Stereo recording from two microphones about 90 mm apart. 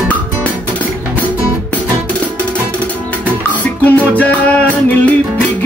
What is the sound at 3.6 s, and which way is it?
Music, 15° left (ahead or behind).